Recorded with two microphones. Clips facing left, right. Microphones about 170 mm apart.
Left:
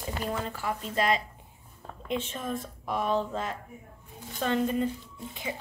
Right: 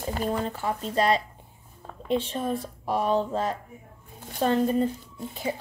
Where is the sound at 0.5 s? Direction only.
30° right (ahead or behind).